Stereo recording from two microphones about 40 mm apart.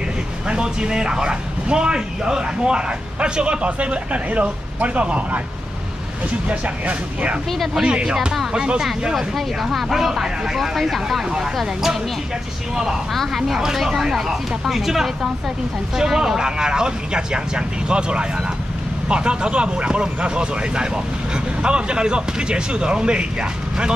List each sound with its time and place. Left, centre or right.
0.5 s a man's voice: right
6.5 s speech: right
7.8 s a man's voice: right
9.1 s speech: centre
10.6 s speech: centre
11.2 s speech: centre
13.3 s a man's voice: centre